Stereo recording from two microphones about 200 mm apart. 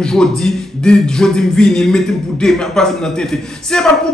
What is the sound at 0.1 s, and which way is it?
Speech, 5° left (ahead or behind).